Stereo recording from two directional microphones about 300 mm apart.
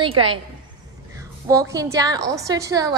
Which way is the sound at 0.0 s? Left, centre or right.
Centre.